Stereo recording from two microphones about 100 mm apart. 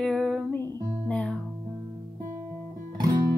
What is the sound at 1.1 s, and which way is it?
Music, 10° left (ahead or behind).